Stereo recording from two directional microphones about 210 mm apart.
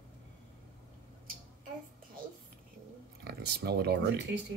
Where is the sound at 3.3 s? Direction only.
50° right (ahead or behind).